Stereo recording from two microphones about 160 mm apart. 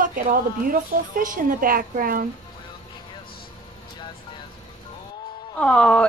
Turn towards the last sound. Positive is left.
turn(degrees=5)  # may be behind; listen again after turning